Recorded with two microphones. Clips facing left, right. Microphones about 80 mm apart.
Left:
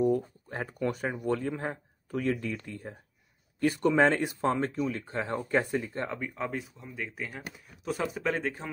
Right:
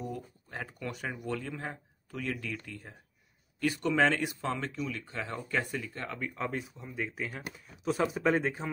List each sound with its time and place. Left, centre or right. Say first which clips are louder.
0.0 s speech: left 13 dB; left
6.1 s speech: left 1 dB; centre